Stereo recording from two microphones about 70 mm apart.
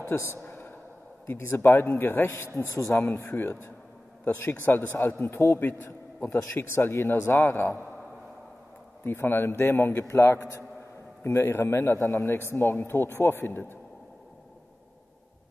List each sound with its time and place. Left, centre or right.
0.0 s speech: left
0.4 s a sound: left
1.2 s speech: left
9.0 s speech: left